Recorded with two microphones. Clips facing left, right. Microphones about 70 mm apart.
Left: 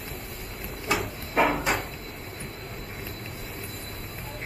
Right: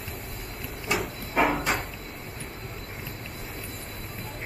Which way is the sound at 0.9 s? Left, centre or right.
Centre.